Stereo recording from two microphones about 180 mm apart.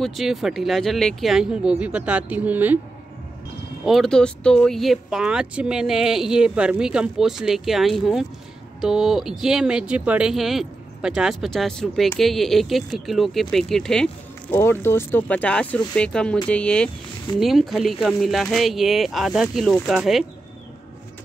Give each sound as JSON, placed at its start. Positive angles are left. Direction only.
{"t": 0.0, "sound": "speech", "side_deg": 0}
{"t": 3.8, "sound": "speech", "side_deg": 0}